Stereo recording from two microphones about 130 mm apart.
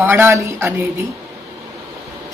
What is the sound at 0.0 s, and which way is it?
Speech, 15° right (ahead or behind).